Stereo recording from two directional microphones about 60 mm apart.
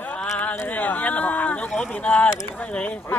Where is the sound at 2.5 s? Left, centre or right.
Centre.